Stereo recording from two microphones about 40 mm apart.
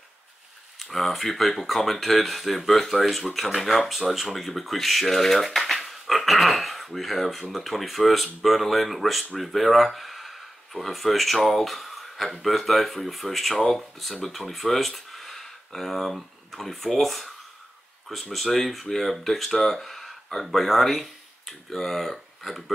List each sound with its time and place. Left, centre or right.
0.7 s speech: centre